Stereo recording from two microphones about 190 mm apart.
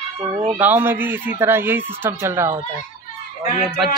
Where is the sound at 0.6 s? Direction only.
10° right (ahead or behind).